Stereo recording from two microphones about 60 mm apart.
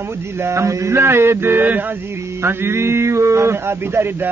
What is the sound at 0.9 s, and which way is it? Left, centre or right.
A man's voice, right.